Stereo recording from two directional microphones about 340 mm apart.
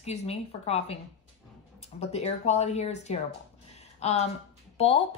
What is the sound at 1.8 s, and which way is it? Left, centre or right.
Speech, centre.